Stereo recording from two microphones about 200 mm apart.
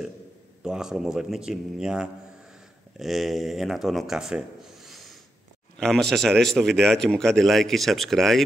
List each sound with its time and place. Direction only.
0.6 s a man's voice: 5° right (ahead or behind)